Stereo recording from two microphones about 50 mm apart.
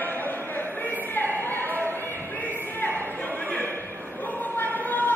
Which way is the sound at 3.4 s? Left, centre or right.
Left.